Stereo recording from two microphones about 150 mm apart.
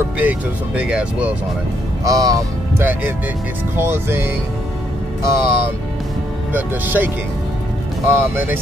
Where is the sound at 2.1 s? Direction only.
25° right (ahead or behind).